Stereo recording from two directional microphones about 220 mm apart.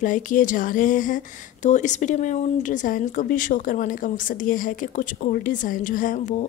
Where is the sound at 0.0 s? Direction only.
35° left (ahead or behind).